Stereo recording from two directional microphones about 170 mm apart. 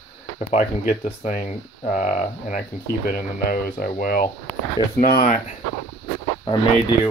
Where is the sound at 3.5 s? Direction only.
60° left (ahead or behind).